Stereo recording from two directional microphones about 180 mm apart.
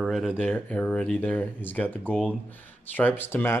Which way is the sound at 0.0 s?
Centre (ahead or behind).